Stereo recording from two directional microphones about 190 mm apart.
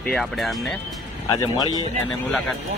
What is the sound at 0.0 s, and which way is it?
Speech, 5° left (ahead or behind).